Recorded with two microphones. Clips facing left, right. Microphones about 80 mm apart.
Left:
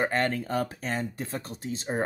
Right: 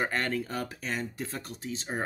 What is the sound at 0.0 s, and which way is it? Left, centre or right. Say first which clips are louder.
Speech: left 3 dB; left.